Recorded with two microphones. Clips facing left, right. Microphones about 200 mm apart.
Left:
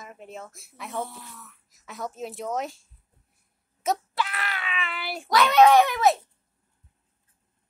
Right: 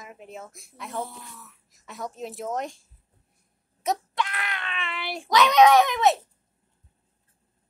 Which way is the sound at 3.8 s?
5° left (ahead or behind).